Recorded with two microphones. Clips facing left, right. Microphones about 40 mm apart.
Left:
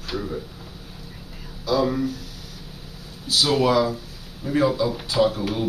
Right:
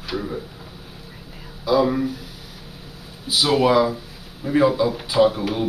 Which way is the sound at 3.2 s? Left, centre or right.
Centre.